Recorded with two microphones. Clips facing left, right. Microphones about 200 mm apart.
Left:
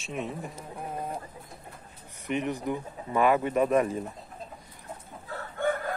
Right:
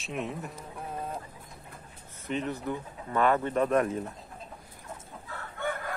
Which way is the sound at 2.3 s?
15° left (ahead or behind).